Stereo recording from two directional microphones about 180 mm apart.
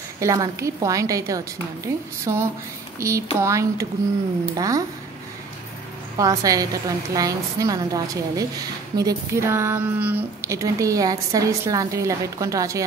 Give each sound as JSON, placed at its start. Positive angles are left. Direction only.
{"t": 0.2, "sound": "a woman's voice", "side_deg": -20}
{"t": 6.1, "sound": "a woman's voice", "side_deg": -20}